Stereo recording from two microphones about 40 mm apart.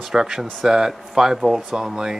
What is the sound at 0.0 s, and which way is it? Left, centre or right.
Speech, centre.